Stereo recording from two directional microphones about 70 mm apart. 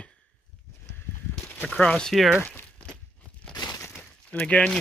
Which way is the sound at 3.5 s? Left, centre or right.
Left.